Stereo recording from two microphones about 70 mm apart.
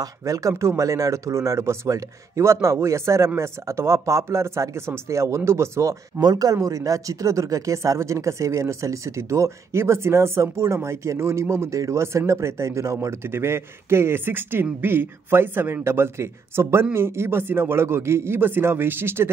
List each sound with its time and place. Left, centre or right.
0.2 s speech: right
6.2 s speech: right